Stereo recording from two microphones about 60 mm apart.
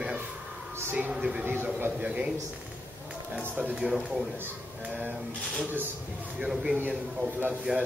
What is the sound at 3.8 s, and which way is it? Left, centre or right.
Speech, centre.